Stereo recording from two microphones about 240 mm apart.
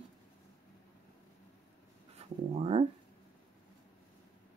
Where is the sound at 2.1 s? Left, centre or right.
Right.